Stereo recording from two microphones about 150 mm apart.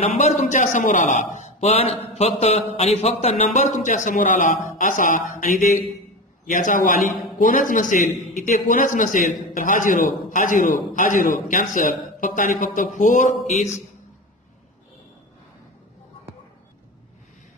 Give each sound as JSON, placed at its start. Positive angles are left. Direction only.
{"t": 0.0, "sound": "a man's voice", "side_deg": 45}